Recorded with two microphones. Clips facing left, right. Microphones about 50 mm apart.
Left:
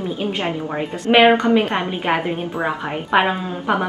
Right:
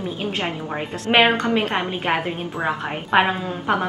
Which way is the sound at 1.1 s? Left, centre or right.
Centre.